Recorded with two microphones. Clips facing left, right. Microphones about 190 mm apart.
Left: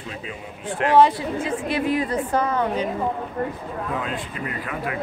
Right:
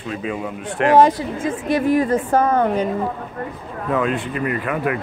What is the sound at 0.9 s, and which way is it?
A woman's voice, 45° right (ahead or behind).